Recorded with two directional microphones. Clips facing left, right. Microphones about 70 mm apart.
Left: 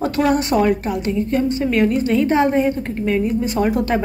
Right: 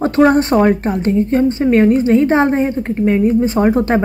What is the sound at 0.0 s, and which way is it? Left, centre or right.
A woman's voice, right.